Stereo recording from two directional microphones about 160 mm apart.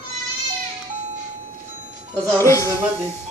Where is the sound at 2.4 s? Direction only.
20° left (ahead or behind).